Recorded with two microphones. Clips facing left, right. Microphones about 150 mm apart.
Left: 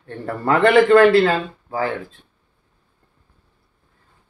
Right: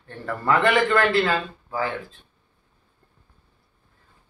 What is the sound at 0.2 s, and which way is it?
A man's voice, 35° left (ahead or behind).